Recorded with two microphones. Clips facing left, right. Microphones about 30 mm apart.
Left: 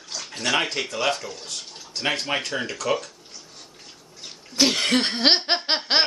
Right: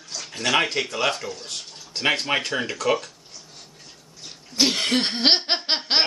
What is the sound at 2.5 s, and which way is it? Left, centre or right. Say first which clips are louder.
Speech: right 2 dB; centre.